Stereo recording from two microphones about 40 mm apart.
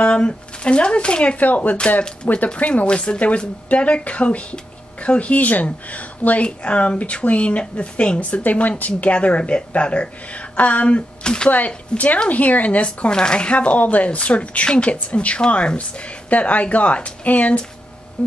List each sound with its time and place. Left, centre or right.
0.0 s speech: left
1.4 s a woman's voice: left
9.1 s a woman's voice: left
11.2 s speech: left
12.3 s a woman's voice: left
13.1 s a woman's voice: left
16.3 s a woman's voice: left